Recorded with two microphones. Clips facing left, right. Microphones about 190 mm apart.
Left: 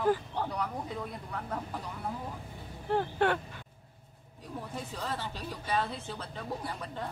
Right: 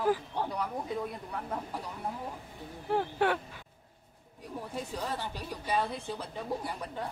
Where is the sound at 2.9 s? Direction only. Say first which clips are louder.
Even; 5° right (ahead or behind).